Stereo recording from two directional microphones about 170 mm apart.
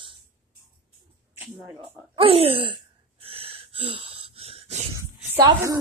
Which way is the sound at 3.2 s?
35° right (ahead or behind).